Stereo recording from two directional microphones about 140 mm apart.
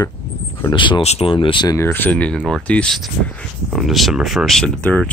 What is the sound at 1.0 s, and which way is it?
Speech, 45° left (ahead or behind).